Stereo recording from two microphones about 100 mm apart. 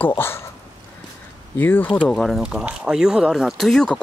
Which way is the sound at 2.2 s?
5° right (ahead or behind).